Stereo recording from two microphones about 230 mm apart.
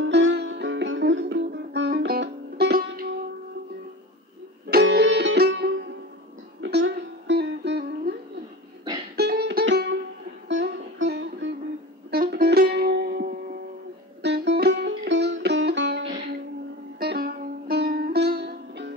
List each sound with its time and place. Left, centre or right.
0.0 s music: right
4.6 s music: right
17.0 s music: right